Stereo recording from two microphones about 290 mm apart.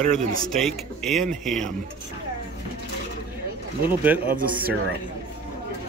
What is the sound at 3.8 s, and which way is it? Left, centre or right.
Speech, centre.